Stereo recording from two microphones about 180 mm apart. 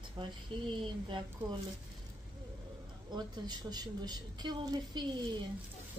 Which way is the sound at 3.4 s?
25° right (ahead or behind).